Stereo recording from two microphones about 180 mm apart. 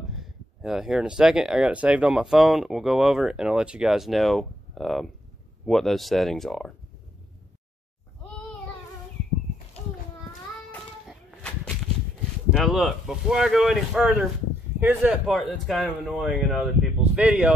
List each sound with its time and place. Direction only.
0.1 s speech: centre (ahead or behind)
11.1 s a sound: 5° left (ahead or behind)
12.4 s speech: centre (ahead or behind)